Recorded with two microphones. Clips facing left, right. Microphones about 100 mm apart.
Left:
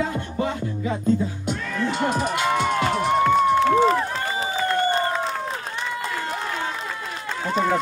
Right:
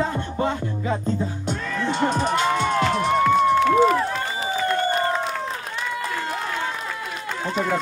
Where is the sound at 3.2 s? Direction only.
30° left (ahead or behind).